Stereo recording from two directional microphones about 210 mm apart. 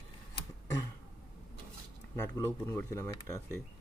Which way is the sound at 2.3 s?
15° left (ahead or behind).